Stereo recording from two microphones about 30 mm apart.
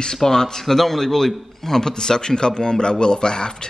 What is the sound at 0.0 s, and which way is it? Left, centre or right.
A man's voice, centre.